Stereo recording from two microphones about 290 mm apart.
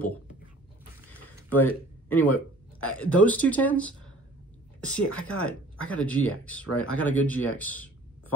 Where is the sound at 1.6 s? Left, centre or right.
Centre.